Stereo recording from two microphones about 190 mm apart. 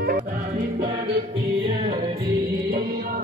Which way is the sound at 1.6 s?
25° right (ahead or behind).